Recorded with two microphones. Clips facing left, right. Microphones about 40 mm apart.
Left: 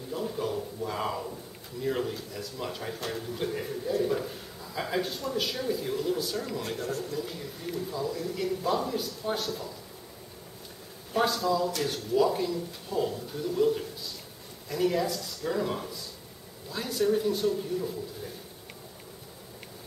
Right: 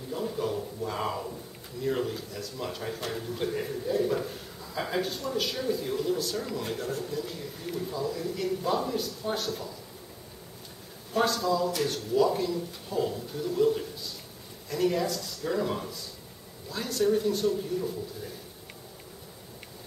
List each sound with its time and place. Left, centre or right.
0.1 s a sound: centre
1.8 s a man's voice: centre
11.1 s a man's voice: centre